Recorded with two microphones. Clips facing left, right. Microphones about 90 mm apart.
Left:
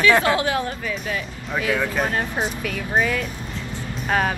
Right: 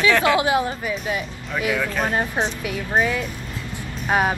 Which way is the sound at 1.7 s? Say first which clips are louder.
Left 1 dB; 10° left (ahead or behind).